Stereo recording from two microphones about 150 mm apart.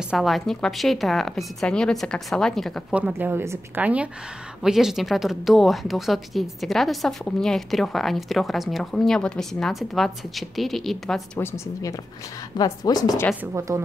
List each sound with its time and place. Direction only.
0.1 s speech: centre (ahead or behind)
3.2 s speech: 15° right (ahead or behind)
11.3 s a woman's voice: 15° left (ahead or behind)
13.4 s speech: 15° right (ahead or behind)